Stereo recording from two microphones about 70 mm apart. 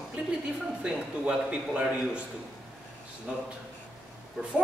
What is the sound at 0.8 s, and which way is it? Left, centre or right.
Speech, centre.